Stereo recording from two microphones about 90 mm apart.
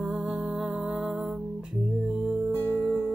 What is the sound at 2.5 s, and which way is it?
Music, 20° left (ahead or behind).